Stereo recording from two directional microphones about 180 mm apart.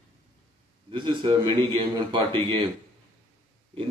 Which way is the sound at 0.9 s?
25° right (ahead or behind).